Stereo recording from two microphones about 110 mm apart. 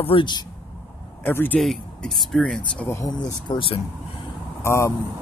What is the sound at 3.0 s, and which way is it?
Speech, 40° left (ahead or behind).